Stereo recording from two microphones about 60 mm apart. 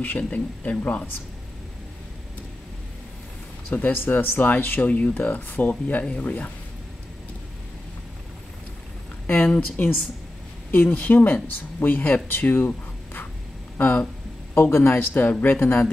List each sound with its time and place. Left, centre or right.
0.2 s speech: left
3.7 s speech: left
9.3 s speech: left
12.3 s writing: left
13.7 s speech: left
14.7 s speech: left